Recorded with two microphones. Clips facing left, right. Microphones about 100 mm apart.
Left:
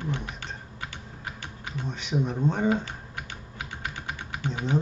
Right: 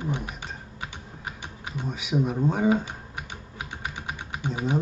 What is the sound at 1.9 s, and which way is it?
Speech, 5° right (ahead or behind).